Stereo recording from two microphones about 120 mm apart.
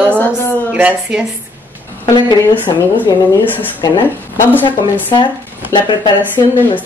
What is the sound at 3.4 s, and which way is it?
Speech, 15° left (ahead or behind).